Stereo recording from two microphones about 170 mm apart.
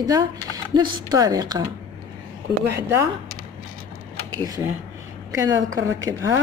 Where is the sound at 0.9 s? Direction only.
25° right (ahead or behind).